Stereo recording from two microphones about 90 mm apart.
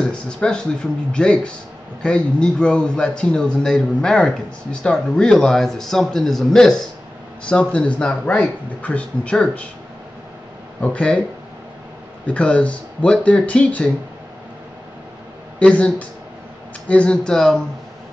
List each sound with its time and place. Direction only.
0.0 s a man's voice: 10° left (ahead or behind)
10.8 s a man's voice: 15° left (ahead or behind)
12.4 s a man's voice: 15° left (ahead or behind)
15.6 s a man's voice: 15° left (ahead or behind)